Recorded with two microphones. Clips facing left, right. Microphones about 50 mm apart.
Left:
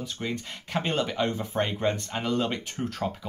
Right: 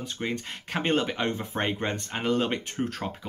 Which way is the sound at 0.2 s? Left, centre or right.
Right.